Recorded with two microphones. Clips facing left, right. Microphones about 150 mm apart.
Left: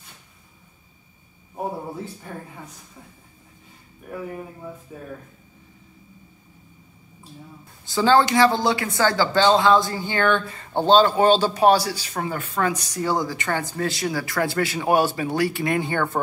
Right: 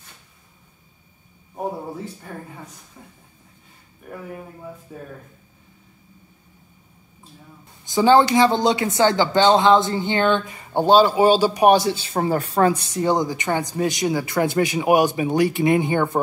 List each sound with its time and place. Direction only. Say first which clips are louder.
4.1 s speech: left 2 dB; centre (ahead or behind)
7.8 s speech: right 3 dB; 20° right (ahead or behind)